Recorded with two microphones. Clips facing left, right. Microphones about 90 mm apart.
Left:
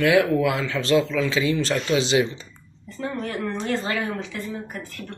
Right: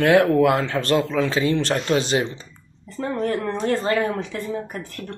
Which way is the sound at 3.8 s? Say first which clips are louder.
Right 5 dB; 45° right (ahead or behind).